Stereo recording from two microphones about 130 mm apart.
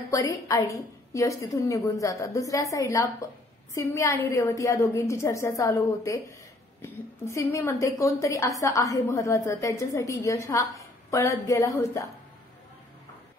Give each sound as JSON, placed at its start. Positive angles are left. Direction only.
{"t": 0.1, "sound": "a woman's voice", "side_deg": 25}